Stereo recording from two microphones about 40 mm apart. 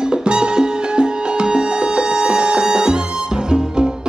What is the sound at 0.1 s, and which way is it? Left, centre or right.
Music, right.